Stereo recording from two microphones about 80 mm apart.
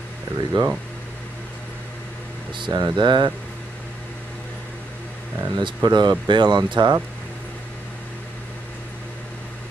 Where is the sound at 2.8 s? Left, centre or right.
Right.